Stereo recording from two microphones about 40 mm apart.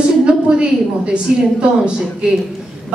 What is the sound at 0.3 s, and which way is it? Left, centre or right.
A woman's voice, right.